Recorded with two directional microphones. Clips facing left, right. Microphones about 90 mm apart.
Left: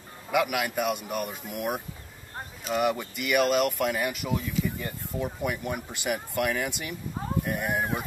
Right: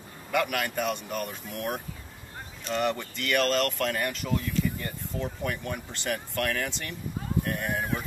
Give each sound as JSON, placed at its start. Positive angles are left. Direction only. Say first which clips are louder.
{"t": 0.3, "sound": "speech", "louder": "left 2 dB", "side_deg": 5}